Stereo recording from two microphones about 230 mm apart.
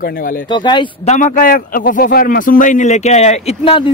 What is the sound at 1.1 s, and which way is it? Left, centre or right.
Speech, left.